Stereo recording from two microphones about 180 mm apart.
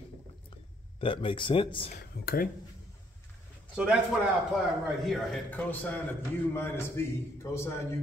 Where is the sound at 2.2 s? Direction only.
55° left (ahead or behind).